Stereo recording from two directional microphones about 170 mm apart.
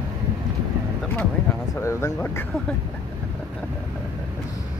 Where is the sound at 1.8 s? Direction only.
15° left (ahead or behind).